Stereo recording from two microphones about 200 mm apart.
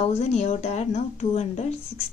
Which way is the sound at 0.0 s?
35° left (ahead or behind).